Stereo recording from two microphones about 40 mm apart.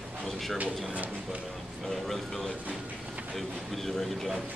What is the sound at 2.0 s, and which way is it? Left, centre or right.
A man's voice, centre.